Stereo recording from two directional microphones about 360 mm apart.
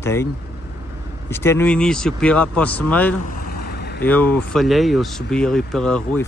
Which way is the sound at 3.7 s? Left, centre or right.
Left.